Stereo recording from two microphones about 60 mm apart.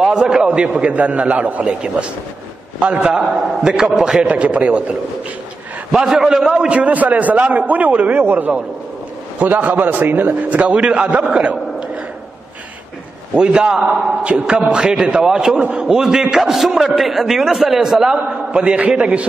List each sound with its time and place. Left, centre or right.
0.0 s a man's voice: centre
1.7 s a man's voice: centre
5.9 s a man's voice: centre
6.7 s a man's voice: right
10.5 s a man's voice: right
13.4 s a man's voice: centre